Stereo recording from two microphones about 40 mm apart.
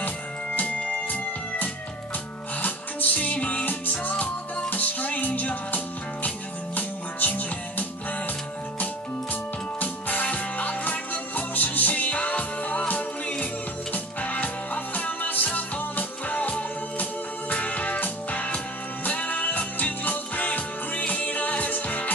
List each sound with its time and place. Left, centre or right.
0.6 s music: left
9.3 s music: left